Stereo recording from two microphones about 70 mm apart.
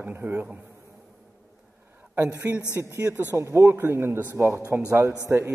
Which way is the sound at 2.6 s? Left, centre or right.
Left.